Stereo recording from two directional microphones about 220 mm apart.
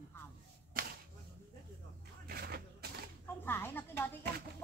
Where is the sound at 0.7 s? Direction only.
40° right (ahead or behind).